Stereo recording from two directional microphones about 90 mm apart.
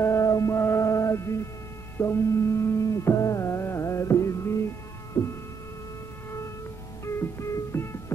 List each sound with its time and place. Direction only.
0.0 s music: 35° left (ahead or behind)
2.0 s carnatic music: 30° left (ahead or behind)
5.2 s hum: 25° left (ahead or behind)
7.1 s music: 30° left (ahead or behind)